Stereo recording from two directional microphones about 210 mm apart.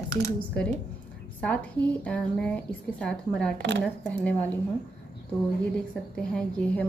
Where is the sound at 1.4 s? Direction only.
5° left (ahead or behind).